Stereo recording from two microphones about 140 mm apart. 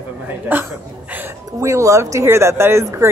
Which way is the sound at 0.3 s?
15° right (ahead or behind).